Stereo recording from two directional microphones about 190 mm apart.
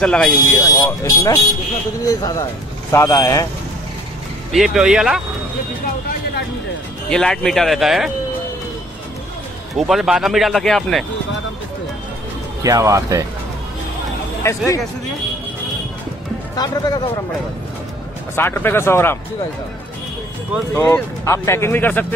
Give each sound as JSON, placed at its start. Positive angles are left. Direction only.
{"t": 0.0, "sound": "speech", "side_deg": 5}
{"t": 0.6, "sound": "a man's voice", "side_deg": 15}
{"t": 4.5, "sound": "speech", "side_deg": 0}
{"t": 7.1, "sound": "speech", "side_deg": 5}
{"t": 9.8, "sound": "speech", "side_deg": 0}
{"t": 12.6, "sound": "speech", "side_deg": -15}
{"t": 16.5, "sound": "a man's voice", "side_deg": 20}
{"t": 18.3, "sound": "speech", "side_deg": 10}
{"t": 20.7, "sound": "speech", "side_deg": 10}